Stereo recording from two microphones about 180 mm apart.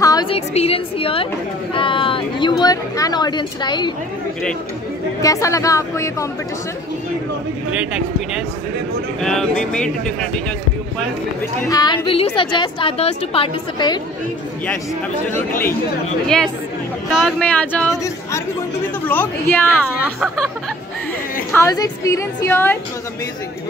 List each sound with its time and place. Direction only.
0.0 s a sound: 20° left (ahead or behind)
0.3 s a sound: 30° left (ahead or behind)
2.6 s a woman's voice: 20° left (ahead or behind)
5.2 s a woman's voice: 15° left (ahead or behind)
9.2 s speech: 5° left (ahead or behind)
11.7 s a woman's voice: 25° left (ahead or behind)
17.1 s speech: centre (ahead or behind)
19.0 s a woman's voice: 10° left (ahead or behind)
19.7 s speech: 5° right (ahead or behind)
21.5 s a woman's voice: 20° left (ahead or behind)